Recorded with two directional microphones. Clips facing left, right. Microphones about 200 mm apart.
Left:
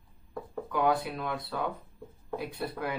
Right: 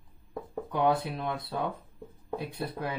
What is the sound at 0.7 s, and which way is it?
Speech, 25° right (ahead or behind).